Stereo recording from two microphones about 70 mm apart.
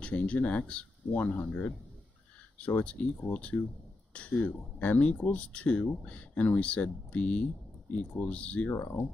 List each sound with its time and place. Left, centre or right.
0.0 s speech: centre